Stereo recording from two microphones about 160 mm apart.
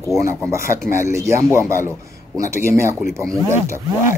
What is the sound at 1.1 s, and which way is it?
Speech, 20° right (ahead or behind).